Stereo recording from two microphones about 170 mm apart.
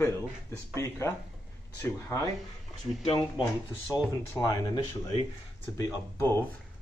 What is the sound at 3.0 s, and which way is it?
Speech, 25° left (ahead or behind).